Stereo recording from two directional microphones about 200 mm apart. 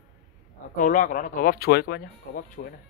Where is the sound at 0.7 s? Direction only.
40° left (ahead or behind).